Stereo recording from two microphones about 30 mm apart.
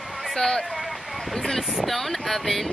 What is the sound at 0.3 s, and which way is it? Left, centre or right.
Speech, centre.